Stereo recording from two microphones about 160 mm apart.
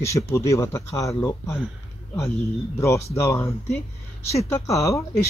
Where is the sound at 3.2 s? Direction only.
20° left (ahead or behind).